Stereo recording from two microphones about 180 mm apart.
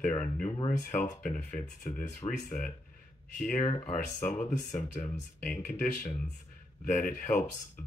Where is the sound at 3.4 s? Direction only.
40° left (ahead or behind).